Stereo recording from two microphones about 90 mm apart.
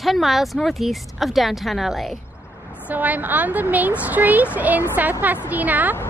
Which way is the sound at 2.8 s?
15° right (ahead or behind).